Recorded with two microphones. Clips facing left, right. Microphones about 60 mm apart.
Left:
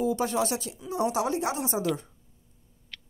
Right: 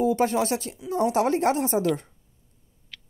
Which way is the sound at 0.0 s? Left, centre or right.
Right.